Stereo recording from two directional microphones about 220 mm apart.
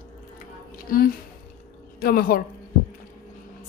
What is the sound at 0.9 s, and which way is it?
A woman's voice, 40° left (ahead or behind).